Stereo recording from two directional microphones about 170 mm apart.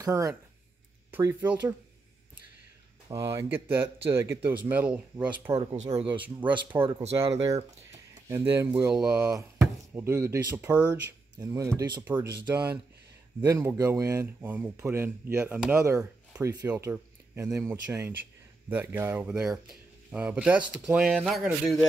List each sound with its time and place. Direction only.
0.0 s speech: 20° right (ahead or behind)
3.1 s speech: 20° right (ahead or behind)
5.7 s speech: 25° right (ahead or behind)
7.1 s speech: 20° right (ahead or behind)
10.9 s speech: 20° right (ahead or behind)
12.0 s speech: 10° right (ahead or behind)